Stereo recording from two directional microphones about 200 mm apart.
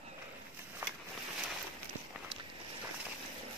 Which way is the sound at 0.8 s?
10° right (ahead or behind).